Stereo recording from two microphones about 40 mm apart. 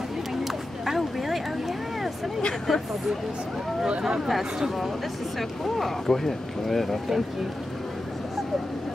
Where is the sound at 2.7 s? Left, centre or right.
Centre.